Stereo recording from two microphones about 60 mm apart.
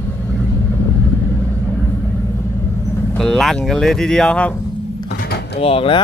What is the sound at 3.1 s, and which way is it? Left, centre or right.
Speech, centre.